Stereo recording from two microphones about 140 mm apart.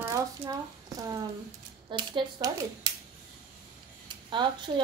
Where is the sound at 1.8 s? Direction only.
35° right (ahead or behind).